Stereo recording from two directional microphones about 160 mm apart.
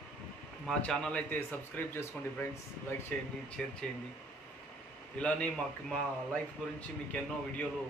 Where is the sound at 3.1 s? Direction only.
5° left (ahead or behind).